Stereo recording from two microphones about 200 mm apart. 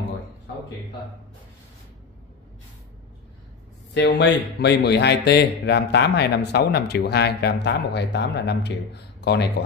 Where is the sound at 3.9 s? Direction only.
60° left (ahead or behind).